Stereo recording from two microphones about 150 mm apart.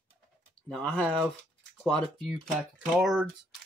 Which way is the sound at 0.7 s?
5° left (ahead or behind).